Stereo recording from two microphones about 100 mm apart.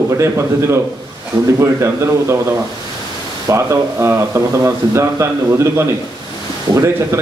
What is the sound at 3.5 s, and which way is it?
A man's voice, 30° right (ahead or behind).